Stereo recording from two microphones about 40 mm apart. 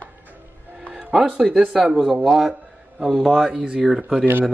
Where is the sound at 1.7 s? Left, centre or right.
Centre.